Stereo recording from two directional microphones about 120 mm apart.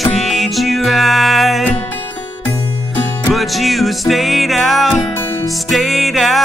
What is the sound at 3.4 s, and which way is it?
Music, centre (ahead or behind).